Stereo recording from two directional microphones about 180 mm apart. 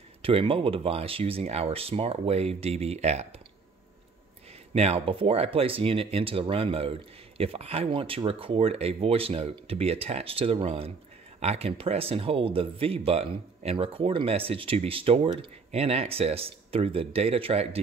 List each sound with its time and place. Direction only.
0.2 s speech: 30° right (ahead or behind)
4.7 s speech: 35° right (ahead or behind)